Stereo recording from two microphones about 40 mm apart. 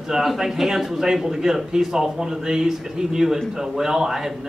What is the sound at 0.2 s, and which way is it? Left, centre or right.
A man's voice, centre.